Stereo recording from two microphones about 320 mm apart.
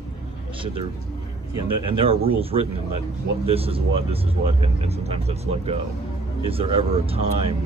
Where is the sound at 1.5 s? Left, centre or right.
Centre.